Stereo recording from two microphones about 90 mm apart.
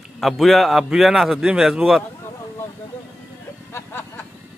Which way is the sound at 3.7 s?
25° left (ahead or behind).